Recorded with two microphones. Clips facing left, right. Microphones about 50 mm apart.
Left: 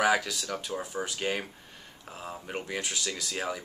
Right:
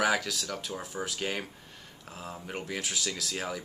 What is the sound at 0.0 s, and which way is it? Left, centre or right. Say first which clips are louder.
Speech: left 2 dB; centre.